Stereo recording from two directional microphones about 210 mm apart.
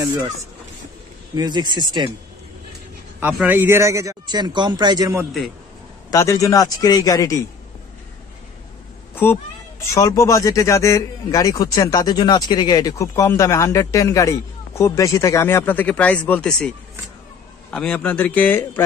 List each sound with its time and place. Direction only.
1.3 s speech: 20° right (ahead or behind)
3.2 s a man's voice: 10° right (ahead or behind)
6.0 s speech: 15° left (ahead or behind)
9.1 s speech: 10° left (ahead or behind)